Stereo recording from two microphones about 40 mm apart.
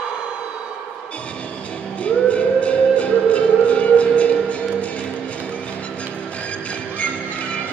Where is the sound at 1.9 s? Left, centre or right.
Left.